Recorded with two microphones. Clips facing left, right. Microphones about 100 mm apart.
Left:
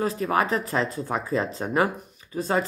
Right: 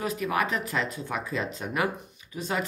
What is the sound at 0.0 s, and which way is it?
Speech, 30° left (ahead or behind).